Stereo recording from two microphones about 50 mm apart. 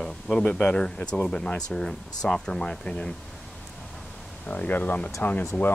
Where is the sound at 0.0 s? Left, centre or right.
Centre.